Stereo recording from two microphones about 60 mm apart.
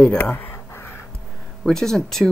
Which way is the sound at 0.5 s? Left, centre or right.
Left.